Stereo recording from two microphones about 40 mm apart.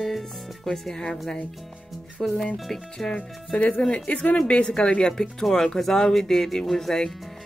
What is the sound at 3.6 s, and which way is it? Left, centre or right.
Speech, left.